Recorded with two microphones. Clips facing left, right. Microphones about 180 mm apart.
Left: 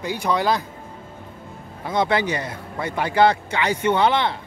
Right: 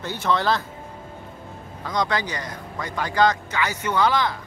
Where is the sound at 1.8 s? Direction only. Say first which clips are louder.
Left 4 dB; 25° left (ahead or behind).